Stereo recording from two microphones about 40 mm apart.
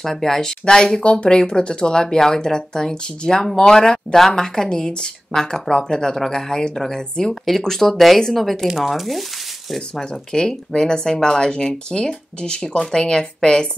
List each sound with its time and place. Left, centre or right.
0.0 s speech: centre
9.8 s speech: centre